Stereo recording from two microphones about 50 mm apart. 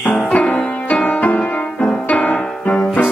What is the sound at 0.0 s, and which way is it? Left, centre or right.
Music, left.